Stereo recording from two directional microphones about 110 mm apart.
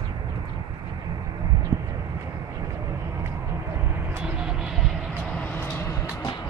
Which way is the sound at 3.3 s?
20° right (ahead or behind).